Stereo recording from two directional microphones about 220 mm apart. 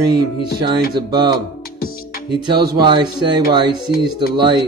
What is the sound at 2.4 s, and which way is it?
Speech, 20° right (ahead or behind).